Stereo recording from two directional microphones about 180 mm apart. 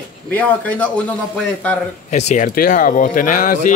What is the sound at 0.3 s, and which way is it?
A man's voice, 10° left (ahead or behind).